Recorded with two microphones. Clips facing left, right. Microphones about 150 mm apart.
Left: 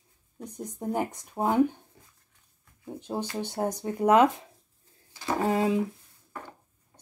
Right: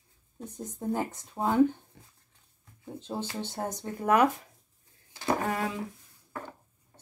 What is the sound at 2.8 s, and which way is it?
Speech, 15° left (ahead or behind).